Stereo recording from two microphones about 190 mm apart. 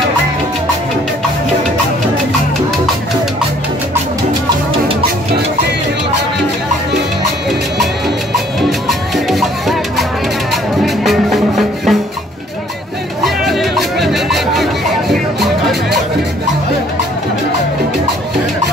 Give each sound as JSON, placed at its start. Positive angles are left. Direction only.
{"t": 8.5, "sound": "music", "side_deg": 0}
{"t": 13.2, "sound": "music", "side_deg": 0}